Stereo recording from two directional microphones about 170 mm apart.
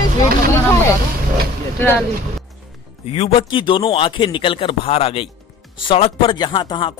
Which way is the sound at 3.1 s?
30° left (ahead or behind).